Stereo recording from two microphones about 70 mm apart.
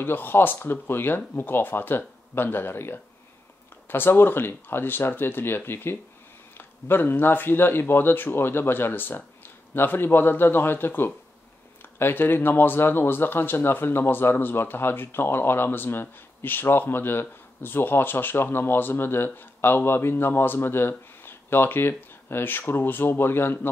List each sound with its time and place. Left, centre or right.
0.0 s speech: left